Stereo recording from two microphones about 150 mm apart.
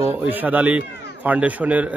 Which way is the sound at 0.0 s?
15° right (ahead or behind).